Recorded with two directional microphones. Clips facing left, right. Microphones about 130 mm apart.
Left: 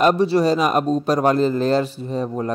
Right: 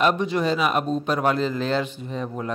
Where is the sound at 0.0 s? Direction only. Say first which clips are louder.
Left 5 dB; 35° left (ahead or behind).